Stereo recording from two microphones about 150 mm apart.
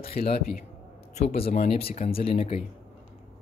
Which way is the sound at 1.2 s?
45° left (ahead or behind).